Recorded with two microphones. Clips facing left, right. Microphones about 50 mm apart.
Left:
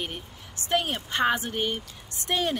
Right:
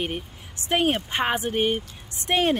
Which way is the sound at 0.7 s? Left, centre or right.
Right.